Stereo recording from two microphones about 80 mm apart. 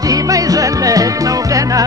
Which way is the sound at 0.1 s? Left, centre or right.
Right.